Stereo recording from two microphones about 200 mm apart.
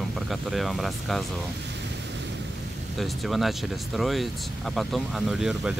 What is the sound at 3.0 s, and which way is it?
Speech, centre (ahead or behind).